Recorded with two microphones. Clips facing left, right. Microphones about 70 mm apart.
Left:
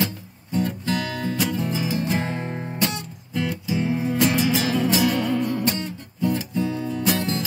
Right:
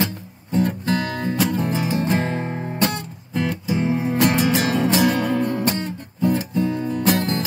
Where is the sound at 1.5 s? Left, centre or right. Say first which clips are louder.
Right 3 dB; right.